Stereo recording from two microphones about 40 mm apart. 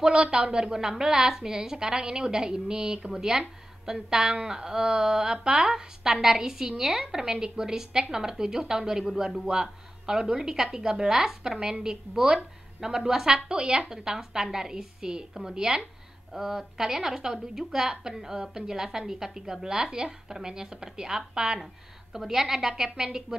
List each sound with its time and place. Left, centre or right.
0.0 s a woman's voice: right
13.5 s a woman's voice: right
22.1 s a woman's voice: centre